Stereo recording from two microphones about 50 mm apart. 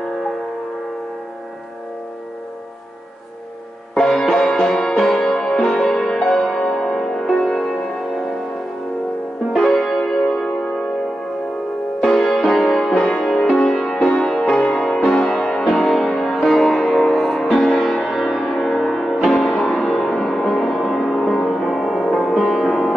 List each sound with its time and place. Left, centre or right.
4.1 s music: centre
6.1 s music: centre
9.5 s music: centre
12.1 s music: centre
18.0 s music: centre